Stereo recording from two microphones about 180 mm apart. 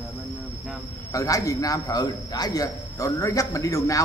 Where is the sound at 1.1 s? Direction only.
20° left (ahead or behind).